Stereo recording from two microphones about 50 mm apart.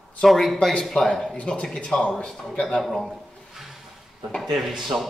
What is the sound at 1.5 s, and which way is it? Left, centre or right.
Speech, centre.